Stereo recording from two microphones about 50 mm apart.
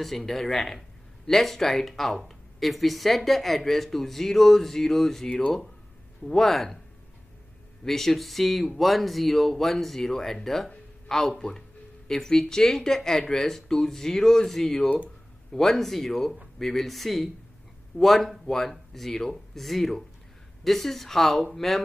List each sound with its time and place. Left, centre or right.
0.0 s speech: centre
7.8 s speech: centre